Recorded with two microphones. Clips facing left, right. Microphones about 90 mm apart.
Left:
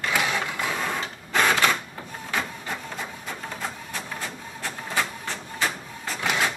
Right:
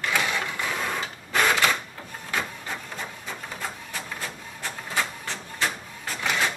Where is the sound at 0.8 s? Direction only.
Centre (ahead or behind).